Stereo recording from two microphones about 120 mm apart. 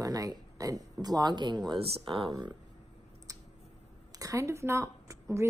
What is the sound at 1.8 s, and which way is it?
Speech, 50° right (ahead or behind).